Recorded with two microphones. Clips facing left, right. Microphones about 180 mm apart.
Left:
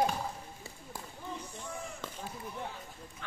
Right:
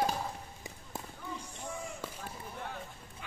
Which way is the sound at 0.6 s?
15° right (ahead or behind).